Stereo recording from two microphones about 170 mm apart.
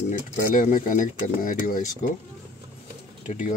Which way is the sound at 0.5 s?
50° left (ahead or behind).